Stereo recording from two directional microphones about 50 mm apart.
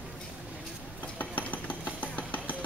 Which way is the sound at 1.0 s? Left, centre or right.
Left.